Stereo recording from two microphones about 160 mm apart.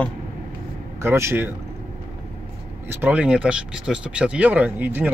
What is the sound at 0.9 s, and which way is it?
Speech, 15° right (ahead or behind).